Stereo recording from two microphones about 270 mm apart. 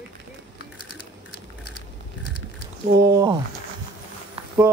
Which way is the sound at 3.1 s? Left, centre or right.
Centre.